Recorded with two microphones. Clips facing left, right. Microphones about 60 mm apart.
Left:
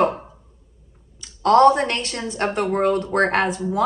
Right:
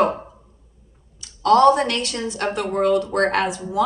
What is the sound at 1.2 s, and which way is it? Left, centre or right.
Speech, left.